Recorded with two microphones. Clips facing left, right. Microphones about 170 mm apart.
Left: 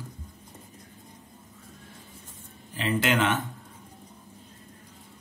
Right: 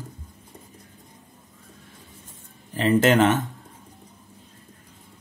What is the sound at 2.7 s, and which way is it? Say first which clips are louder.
Speech: right 8 dB; 45° right (ahead or behind).